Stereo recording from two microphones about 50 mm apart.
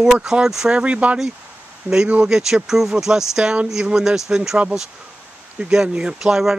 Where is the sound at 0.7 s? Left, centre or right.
Right.